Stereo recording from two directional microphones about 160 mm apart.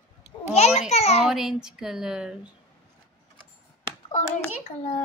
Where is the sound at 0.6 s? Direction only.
45° left (ahead or behind).